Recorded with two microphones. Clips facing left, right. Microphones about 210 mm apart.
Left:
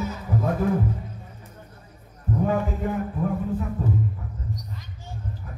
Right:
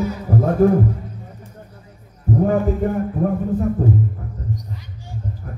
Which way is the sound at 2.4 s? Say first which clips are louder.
Right 6 dB; 45° right (ahead or behind).